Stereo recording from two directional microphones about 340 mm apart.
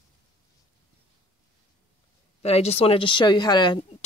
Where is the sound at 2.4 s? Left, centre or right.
Centre.